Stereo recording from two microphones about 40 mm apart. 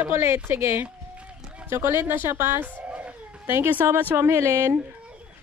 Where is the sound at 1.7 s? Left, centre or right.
Right.